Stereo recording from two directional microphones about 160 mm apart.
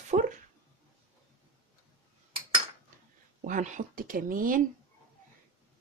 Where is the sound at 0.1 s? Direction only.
55° right (ahead or behind).